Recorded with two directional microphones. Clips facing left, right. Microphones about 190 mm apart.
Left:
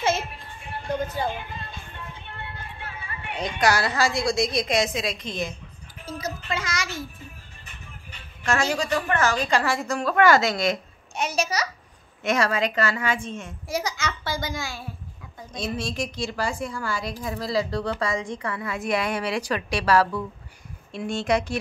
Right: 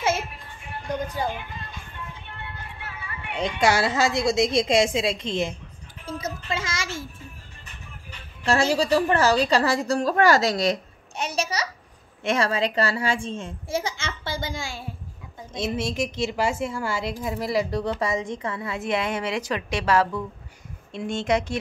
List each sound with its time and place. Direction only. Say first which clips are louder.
2.8 s music: even; 30° left (ahead or behind)
3.3 s a woman's voice: right 2 dB; 25° right (ahead or behind)
8.5 s a woman's voice: right 3 dB; 30° right (ahead or behind)